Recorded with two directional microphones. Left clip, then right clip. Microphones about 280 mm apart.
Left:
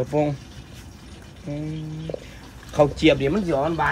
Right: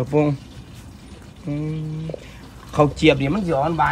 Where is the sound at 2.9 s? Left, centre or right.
Right.